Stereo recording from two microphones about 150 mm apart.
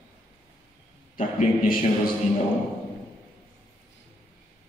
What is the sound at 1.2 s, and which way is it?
Speech, 65° left (ahead or behind).